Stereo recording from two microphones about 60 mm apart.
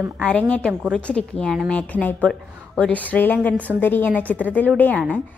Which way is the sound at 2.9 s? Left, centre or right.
Left.